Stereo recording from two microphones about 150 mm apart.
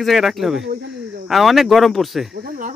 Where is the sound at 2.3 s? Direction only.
75° right (ahead or behind).